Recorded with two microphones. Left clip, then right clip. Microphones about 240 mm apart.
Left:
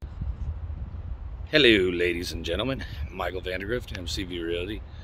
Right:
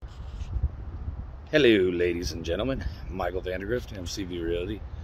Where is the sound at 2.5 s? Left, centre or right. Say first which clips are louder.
Even; centre.